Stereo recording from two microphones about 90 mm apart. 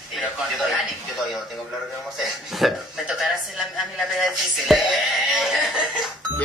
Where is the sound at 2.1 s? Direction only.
Centre (ahead or behind).